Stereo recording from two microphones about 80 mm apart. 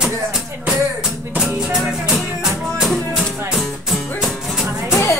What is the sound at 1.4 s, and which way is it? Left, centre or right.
Music, centre.